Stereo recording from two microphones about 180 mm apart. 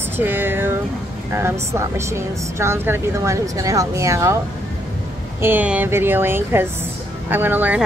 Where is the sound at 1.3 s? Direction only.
15° right (ahead or behind).